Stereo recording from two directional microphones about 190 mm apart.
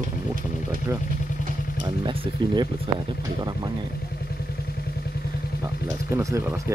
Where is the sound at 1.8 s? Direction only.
25° right (ahead or behind).